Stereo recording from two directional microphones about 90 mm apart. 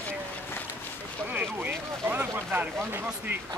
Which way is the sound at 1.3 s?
20° right (ahead or behind).